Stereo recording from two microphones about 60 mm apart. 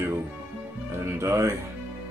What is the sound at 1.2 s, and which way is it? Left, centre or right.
Speech, right.